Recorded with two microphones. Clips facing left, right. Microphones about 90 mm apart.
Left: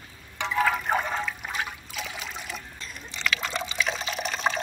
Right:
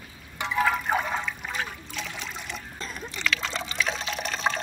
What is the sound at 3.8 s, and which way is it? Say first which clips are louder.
Water: right 1 dB; centre (ahead or behind).